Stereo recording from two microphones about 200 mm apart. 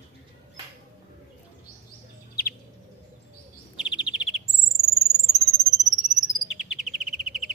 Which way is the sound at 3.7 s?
5° right (ahead or behind).